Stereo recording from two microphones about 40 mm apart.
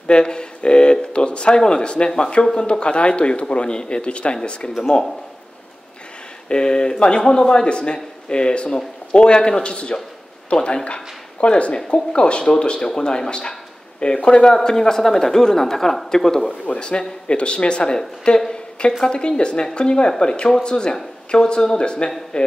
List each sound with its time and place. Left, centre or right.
0.1 s speech: left
6.5 s speech: left
16.4 s a woman's voice: left